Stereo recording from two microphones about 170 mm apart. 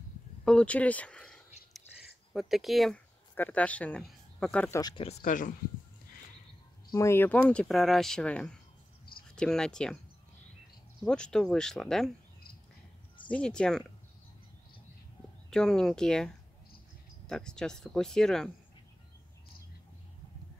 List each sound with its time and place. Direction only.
0.5 s speech: 5° left (ahead or behind)
4.7 s speech: 25° left (ahead or behind)
5.2 s speech: 50° left (ahead or behind)
6.9 s speech: 15° left (ahead or behind)
11.0 s speech: 5° left (ahead or behind)
13.3 s speech: 5° left (ahead or behind)
15.5 s speech: 5° left (ahead or behind)